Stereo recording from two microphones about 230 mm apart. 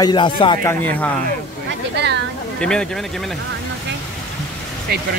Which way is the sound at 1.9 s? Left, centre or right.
Right.